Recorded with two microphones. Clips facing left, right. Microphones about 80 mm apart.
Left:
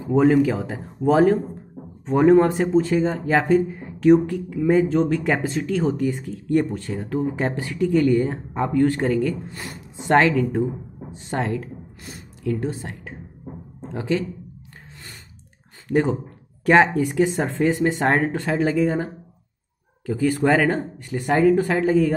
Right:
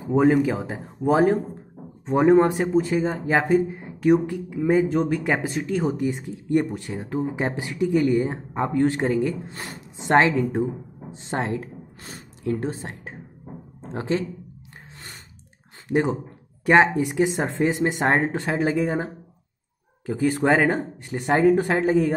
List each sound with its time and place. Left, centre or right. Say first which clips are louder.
0.1 s speech: left 2 dB; centre
2.5 s speech: left 2 dB; centre; by 14.2 s right
15.9 s speech: left 2 dB; centre
20.1 s speech: left 1 dB; centre